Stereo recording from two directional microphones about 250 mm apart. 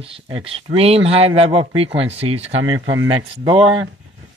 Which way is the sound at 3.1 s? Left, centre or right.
Right.